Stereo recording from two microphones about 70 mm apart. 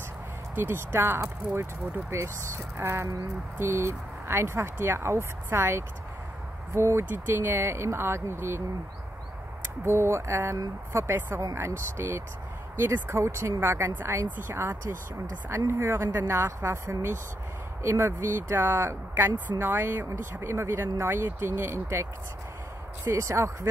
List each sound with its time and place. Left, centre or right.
0.6 s speech: right
9.8 s speech: right
20.1 s speech: right
23.0 s speech: right